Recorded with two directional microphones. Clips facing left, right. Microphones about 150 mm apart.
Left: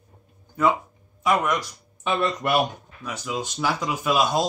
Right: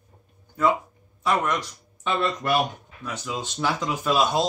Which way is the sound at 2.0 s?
15° left (ahead or behind).